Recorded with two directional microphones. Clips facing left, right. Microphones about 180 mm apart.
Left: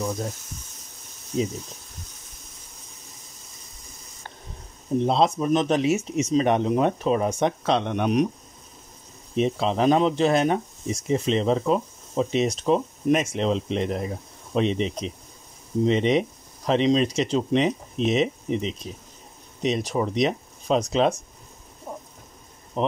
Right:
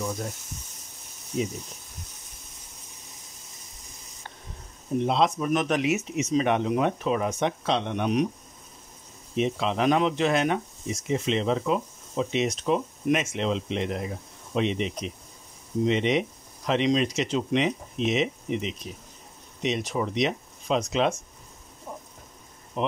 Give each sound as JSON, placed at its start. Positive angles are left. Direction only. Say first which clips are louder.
{"t": 5.0, "sound": "speech", "louder": "left 3 dB", "side_deg": 35}
{"t": 7.6, "sound": "speech", "louder": "left 3 dB", "side_deg": 50}
{"t": 9.3, "sound": "speech", "louder": "left 3 dB", "side_deg": 35}
{"t": 21.9, "sound": "rain", "louder": "left 3 dB", "side_deg": 40}
{"t": 22.8, "sound": "speech", "louder": "left 3 dB", "side_deg": 35}